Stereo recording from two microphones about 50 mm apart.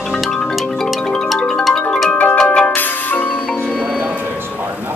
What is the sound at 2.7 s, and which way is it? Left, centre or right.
Music, left.